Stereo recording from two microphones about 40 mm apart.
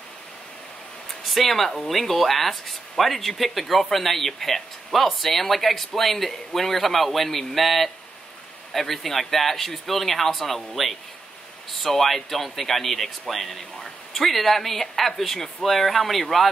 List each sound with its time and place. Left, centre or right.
1.2 s speech: centre